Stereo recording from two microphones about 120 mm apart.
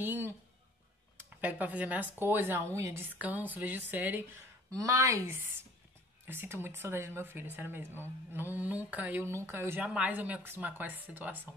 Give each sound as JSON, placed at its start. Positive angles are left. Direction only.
{"t": 0.0, "sound": "a sound", "side_deg": -15}
{"t": 1.4, "sound": "a woman's voice", "side_deg": -10}
{"t": 3.2, "sound": "a woman's voice", "side_deg": -15}
{"t": 4.7, "sound": "a woman's voice", "side_deg": -25}